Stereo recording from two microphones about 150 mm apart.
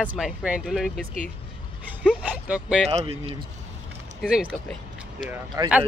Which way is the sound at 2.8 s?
45° right (ahead or behind).